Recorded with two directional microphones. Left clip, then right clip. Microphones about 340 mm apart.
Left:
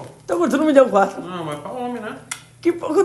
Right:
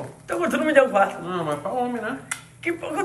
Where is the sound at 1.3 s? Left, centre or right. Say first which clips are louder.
Right 2 dB; centre.